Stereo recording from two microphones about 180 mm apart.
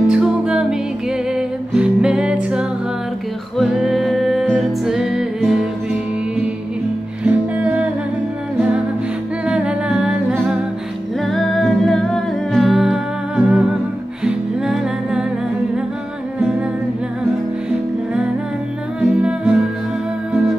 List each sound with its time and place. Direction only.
0.0 s music: 5° right (ahead or behind)
7.2 s music: 10° right (ahead or behind)
9.5 s humming: 5° right (ahead or behind)
11.1 s music: centre (ahead or behind)
16.3 s music: 5° right (ahead or behind)
18.9 s music: 5° right (ahead or behind)